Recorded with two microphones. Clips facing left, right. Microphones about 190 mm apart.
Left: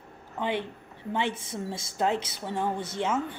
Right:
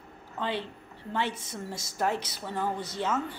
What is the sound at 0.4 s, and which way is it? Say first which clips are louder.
A woman's voice: left 3 dB; 20° left (ahead or behind).